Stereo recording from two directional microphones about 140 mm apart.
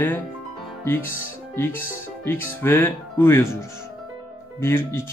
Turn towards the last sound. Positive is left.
turn(degrees=20)  # may be behind; listen again after turning